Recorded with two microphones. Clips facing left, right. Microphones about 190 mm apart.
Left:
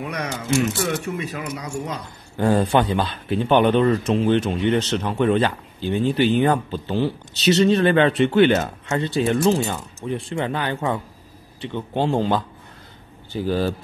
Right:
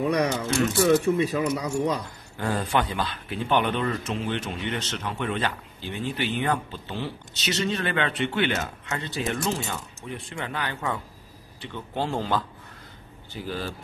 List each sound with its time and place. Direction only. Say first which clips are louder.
0.0 s speech: right 5 dB; 35° right (ahead or behind)
0.5 s speech: left 4 dB; 20° left (ahead or behind)
0.7 s speech: right 5 dB; 30° right (ahead or behind)
2.3 s speech: left 8 dB; 30° left (ahead or behind)
13.3 s speech: left 10 dB; 35° left (ahead or behind)